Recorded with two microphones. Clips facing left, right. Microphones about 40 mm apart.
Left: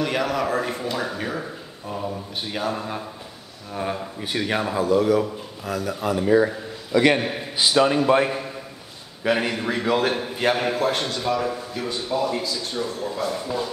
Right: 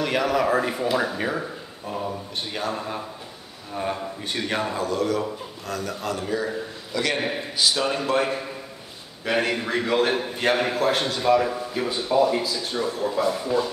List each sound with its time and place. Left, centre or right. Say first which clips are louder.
0.0 s a man's voice: right 1 dB; centre
8.2 s a man's voice: left 2 dB; centre